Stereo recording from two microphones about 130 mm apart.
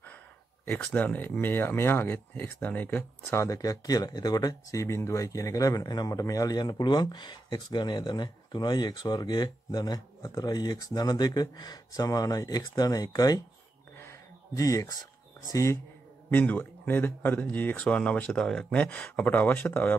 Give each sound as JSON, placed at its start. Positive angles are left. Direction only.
{"t": 0.7, "sound": "speech", "side_deg": 10}
{"t": 13.9, "sound": "a sound", "side_deg": 20}
{"t": 15.5, "sound": "speech", "side_deg": 25}